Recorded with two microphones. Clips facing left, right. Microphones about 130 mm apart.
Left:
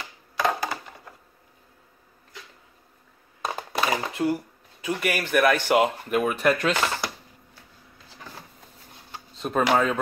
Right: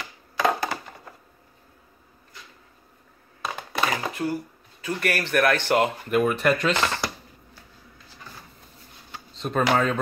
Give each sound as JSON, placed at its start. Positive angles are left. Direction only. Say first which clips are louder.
{"t": 0.4, "sound": "a sound", "louder": "right 2 dB", "side_deg": 0}
{"t": 3.9, "sound": "speech", "louder": "left 2 dB", "side_deg": 20}
{"t": 4.8, "sound": "speech", "louder": "even", "side_deg": 10}
{"t": 9.4, "sound": "speech", "louder": "even", "side_deg": 5}